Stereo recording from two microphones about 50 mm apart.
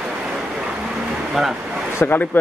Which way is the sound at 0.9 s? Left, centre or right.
Centre.